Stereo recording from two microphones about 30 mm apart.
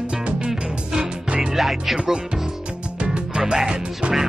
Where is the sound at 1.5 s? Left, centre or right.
Centre.